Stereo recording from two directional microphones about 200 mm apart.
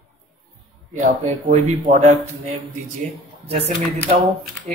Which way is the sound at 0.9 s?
35° right (ahead or behind).